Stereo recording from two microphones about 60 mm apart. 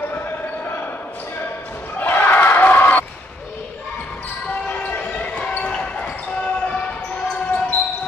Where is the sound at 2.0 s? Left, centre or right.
Left.